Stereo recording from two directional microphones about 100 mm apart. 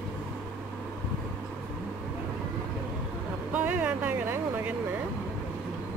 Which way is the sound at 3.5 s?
15° right (ahead or behind).